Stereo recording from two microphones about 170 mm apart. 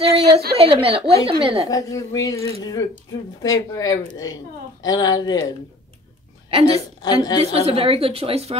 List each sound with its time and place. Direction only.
0.0 s a sound: 35° right (ahead or behind)
0.6 s speech: 35° right (ahead or behind)
1.7 s a woman's voice: 20° left (ahead or behind)
6.5 s speech: 35° right (ahead or behind)
7.0 s a woman's voice: 25° left (ahead or behind)
7.5 s speech: 35° right (ahead or behind)